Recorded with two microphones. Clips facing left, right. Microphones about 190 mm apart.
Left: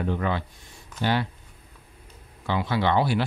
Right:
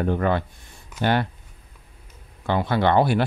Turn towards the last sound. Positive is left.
turn(degrees=-55)  # may be behind; listen again after turning